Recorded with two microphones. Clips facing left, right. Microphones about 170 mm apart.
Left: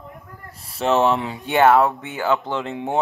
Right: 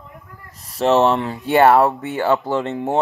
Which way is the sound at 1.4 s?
35° right (ahead or behind).